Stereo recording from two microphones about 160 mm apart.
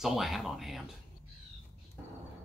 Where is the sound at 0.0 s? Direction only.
Centre (ahead or behind).